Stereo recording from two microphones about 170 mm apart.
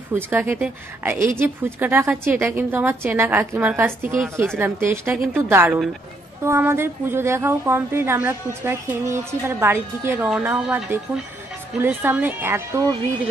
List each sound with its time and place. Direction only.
0.1 s a woman's voice: 10° right (ahead or behind)